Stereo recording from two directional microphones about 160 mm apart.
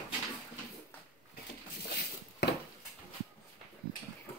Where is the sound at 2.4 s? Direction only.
90° left.